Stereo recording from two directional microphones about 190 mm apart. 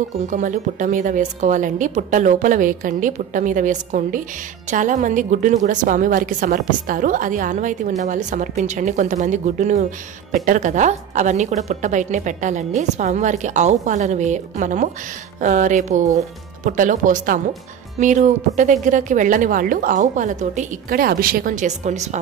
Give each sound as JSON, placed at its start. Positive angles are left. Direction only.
{"t": 0.3, "sound": "a woman's voice", "side_deg": -40}